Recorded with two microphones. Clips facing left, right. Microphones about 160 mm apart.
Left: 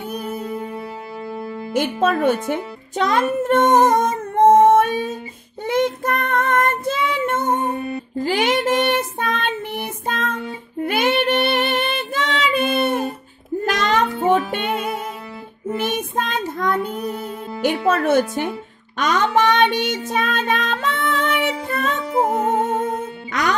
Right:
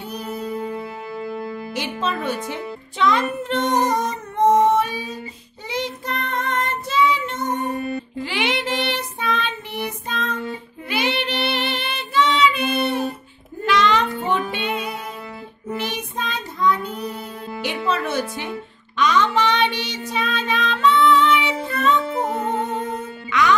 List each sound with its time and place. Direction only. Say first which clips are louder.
0.1 s music: even; 50° left (ahead or behind)
1.7 s a child's voice: left 9 dB; 50° left (ahead or behind)
3.4 s music: left 7 dB; 50° left (ahead or behind)
5.7 s child singing: left 8 dB; 50° left (ahead or behind)
8.2 s child singing: left 7 dB; 40° left (ahead or behind)
13.7 s music: right 1 dB; 45° left (ahead or behind)
15.7 s child singing: left 5 dB; 50° left (ahead or behind)
23.3 s music: right 3 dB; 40° left (ahead or behind)